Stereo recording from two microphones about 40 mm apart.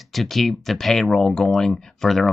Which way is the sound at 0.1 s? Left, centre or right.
Centre.